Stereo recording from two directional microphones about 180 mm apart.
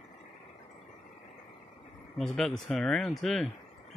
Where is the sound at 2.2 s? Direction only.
Centre (ahead or behind).